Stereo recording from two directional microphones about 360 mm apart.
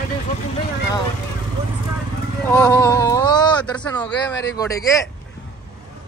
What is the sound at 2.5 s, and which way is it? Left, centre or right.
Speech, centre.